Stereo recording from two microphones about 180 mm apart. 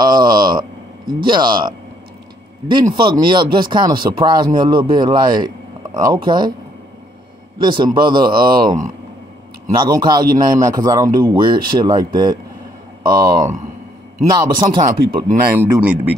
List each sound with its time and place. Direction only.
0.0 s a sound: 25° right (ahead or behind)
2.7 s a man's voice: 25° right (ahead or behind)
7.6 s a man's voice: 25° right (ahead or behind)
15.5 s speech: 10° right (ahead or behind)